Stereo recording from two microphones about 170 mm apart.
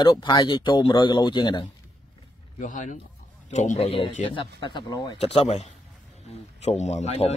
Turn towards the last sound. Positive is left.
turn(degrees=40)  # may be behind; listen again after turning